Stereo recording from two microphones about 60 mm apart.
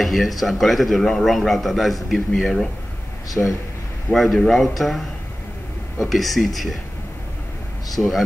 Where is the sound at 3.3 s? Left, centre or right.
Left.